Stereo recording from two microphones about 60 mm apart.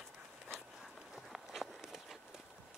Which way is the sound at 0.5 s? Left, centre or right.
Centre.